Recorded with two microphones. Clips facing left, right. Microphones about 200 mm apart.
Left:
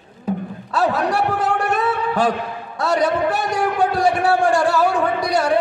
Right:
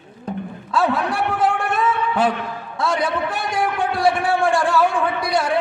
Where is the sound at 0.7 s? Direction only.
40° left (ahead or behind).